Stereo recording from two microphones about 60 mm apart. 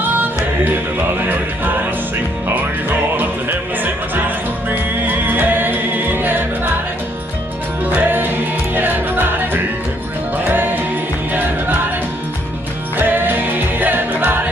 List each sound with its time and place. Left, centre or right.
0.1 s music: right
3.2 s music: right
7.8 s music: right
12.9 s music: right